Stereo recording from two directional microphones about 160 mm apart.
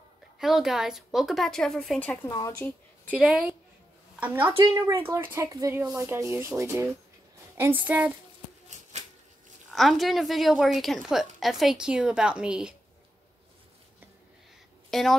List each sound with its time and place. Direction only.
0.4 s a woman's voice: centre (ahead or behind)
2.2 s speech: 25° left (ahead or behind)
3.1 s a woman's voice: 5° right (ahead or behind)
9.7 s a woman's voice: centre (ahead or behind)
14.9 s speech: centre (ahead or behind)